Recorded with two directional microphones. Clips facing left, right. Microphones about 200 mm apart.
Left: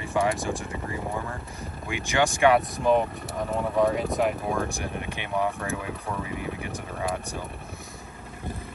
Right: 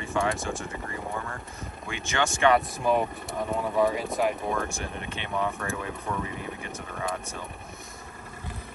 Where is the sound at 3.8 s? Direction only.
Centre (ahead or behind).